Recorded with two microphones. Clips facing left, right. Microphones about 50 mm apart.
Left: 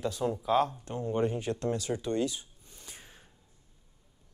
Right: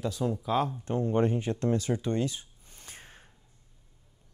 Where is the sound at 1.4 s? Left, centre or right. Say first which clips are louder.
Right 3 dB; right.